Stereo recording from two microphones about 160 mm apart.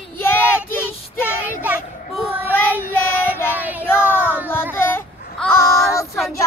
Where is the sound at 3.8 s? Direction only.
15° left (ahead or behind).